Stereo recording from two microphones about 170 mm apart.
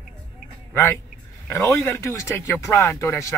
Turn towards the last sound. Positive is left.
turn(degrees=15)  # may be behind; listen again after turning